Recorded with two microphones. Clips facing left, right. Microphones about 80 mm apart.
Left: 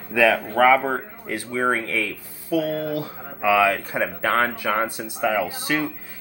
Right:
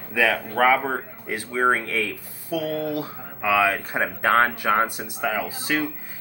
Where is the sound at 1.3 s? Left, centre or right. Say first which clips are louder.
Right 1 dB; right.